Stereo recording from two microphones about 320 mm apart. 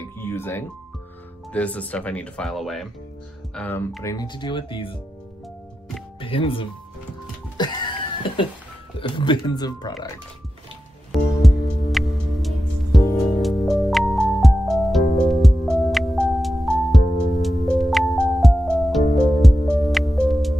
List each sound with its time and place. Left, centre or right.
0.2 s music: centre
1.5 s speech: centre
6.2 s speech: centre
7.5 s music: centre
9.0 s speech: centre
11.1 s music: centre